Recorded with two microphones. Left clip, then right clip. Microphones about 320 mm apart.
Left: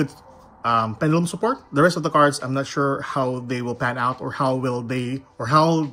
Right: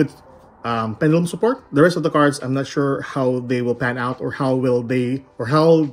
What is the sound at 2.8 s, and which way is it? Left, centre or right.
Speech, right.